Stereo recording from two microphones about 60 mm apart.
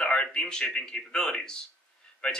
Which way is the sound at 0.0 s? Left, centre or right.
Centre.